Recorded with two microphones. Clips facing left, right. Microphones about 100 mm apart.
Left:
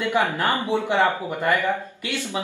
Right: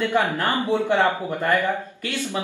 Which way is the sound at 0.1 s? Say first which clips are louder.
Even; 15° left (ahead or behind).